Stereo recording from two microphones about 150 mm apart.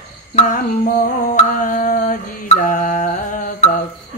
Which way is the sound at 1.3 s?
65° left (ahead or behind).